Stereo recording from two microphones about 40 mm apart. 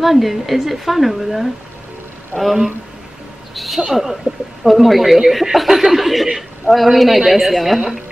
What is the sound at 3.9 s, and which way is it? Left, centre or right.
Speech, centre.